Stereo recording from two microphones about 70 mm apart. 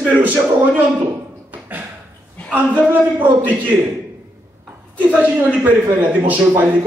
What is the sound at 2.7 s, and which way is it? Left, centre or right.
A man's voice, right.